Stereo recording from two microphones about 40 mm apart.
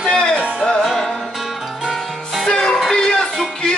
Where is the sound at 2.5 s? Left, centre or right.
Left.